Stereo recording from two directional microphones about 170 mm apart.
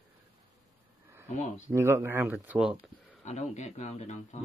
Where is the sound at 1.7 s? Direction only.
15° right (ahead or behind).